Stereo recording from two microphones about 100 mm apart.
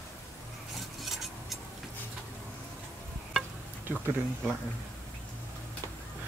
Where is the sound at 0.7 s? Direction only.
Centre (ahead or behind).